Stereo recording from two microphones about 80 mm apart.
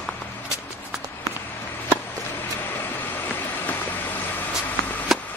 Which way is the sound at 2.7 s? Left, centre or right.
Left.